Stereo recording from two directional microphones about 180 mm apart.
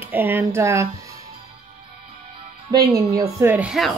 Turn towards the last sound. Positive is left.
turn(degrees=-5)  # may be behind; listen again after turning